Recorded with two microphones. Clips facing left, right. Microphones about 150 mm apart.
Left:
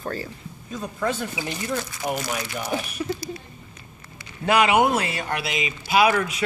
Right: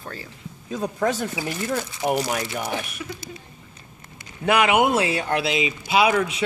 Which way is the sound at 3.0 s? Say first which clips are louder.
Left 7 dB; 35° left (ahead or behind).